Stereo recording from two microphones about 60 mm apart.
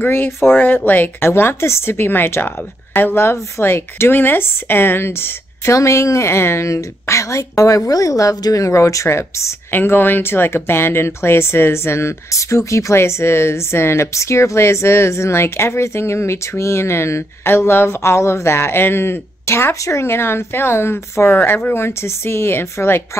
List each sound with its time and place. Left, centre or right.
0.0 s speech: left
5.7 s a woman's voice: left
9.7 s speech: left